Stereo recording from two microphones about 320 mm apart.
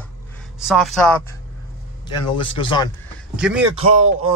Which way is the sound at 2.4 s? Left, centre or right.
Centre.